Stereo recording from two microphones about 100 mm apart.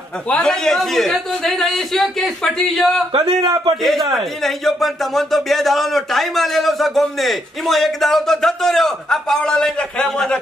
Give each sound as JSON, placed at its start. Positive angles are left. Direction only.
{"t": 0.3, "sound": "speech", "side_deg": 5}
{"t": 3.1, "sound": "a man's voice", "side_deg": -70}
{"t": 4.1, "sound": "speech", "side_deg": 0}